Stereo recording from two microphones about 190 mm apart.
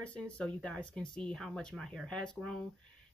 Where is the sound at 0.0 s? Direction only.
5° left (ahead or behind).